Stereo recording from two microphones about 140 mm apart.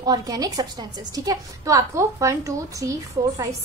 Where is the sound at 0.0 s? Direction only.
30° right (ahead or behind).